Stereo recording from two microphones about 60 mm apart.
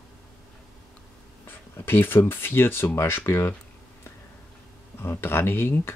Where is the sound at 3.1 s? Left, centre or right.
Left.